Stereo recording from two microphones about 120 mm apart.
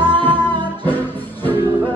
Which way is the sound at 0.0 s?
15° left (ahead or behind).